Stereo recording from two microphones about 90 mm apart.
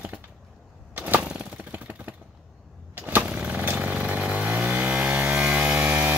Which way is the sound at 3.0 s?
20° right (ahead or behind).